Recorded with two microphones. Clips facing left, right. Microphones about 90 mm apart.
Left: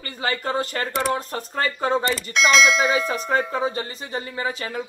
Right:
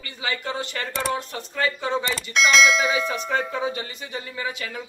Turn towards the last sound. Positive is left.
turn(degrees=35)  # may be behind; listen again after turning